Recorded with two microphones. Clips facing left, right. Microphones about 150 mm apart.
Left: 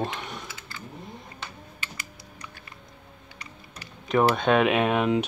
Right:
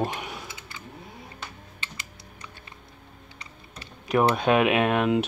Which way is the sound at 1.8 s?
25° right (ahead or behind).